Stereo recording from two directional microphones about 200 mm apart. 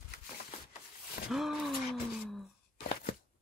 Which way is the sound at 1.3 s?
Centre (ahead or behind).